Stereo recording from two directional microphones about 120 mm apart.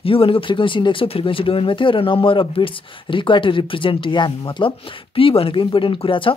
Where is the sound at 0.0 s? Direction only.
50° left (ahead or behind).